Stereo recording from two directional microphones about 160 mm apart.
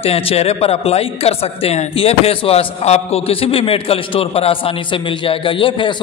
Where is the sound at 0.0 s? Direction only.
40° left (ahead or behind).